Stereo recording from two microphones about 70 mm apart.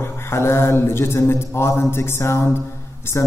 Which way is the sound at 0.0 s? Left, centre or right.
Left.